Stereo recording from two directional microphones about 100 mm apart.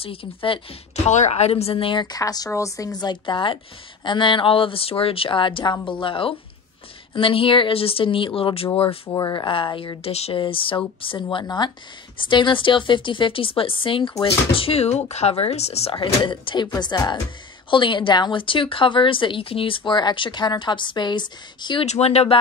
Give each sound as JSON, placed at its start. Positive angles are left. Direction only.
{"t": 0.0, "sound": "speech", "side_deg": 70}
{"t": 1.3, "sound": "speech", "side_deg": 90}
{"t": 9.1, "sound": "speech", "side_deg": 45}
{"t": 10.0, "sound": "speech", "side_deg": 85}
{"t": 16.8, "sound": "speech", "side_deg": 45}
{"t": 17.6, "sound": "speech", "side_deg": 55}
{"t": 21.8, "sound": "speech", "side_deg": 90}